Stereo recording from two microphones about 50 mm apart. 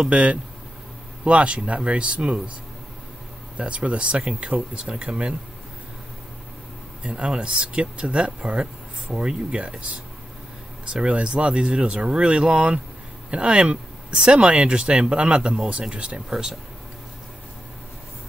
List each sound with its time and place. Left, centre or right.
0.0 s speech: right
3.5 s speech: right
7.0 s speech: right
10.9 s speech: centre